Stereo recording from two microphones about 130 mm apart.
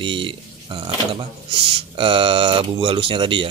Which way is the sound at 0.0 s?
40° right (ahead or behind).